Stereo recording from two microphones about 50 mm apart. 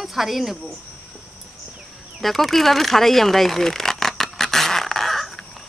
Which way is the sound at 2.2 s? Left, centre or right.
Centre.